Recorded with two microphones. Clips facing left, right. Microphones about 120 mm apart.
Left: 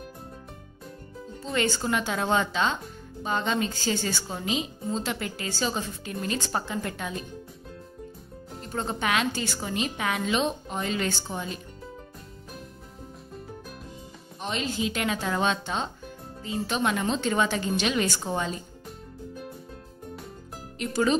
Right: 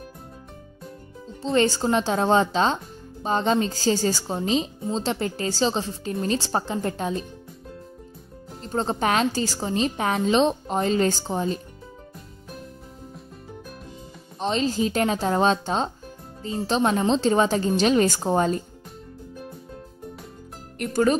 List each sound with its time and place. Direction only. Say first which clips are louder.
1.4 s speech: right 6 dB; 35° right (ahead or behind)
8.5 s speech: right 6 dB; 30° right (ahead or behind)
14.4 s speech: right 6 dB; 35° right (ahead or behind)
20.8 s speech: right 3 dB; 50° right (ahead or behind)